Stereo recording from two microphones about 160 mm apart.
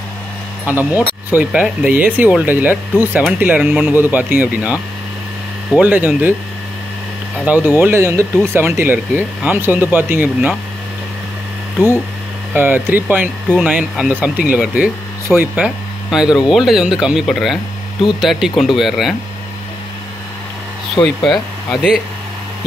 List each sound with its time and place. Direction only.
0.7 s speech: 10° right (ahead or behind)
5.8 s speech: 10° right (ahead or behind)
7.4 s speech: 10° right (ahead or behind)
12.5 s speech: 15° right (ahead or behind)
20.9 s speech: 5° left (ahead or behind)